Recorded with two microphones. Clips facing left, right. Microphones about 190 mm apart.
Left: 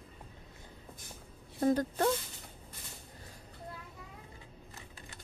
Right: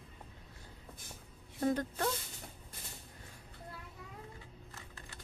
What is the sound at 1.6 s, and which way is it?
Speech, 35° left (ahead or behind).